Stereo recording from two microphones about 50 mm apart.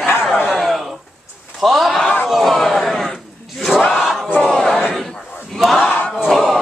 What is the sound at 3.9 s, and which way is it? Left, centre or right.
Crowd, centre.